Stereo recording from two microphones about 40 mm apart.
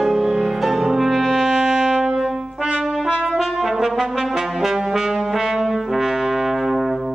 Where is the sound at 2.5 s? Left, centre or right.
Right.